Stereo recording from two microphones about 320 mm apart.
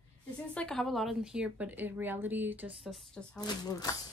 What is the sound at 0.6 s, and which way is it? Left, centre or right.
A woman's voice, centre.